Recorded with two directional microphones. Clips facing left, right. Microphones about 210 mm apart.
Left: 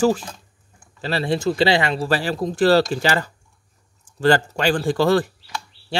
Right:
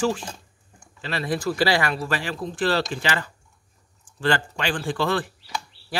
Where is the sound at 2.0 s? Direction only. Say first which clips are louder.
Left 6 dB; 35° left (ahead or behind).